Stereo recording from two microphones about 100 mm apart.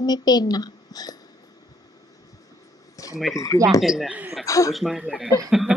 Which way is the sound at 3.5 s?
35° left (ahead or behind).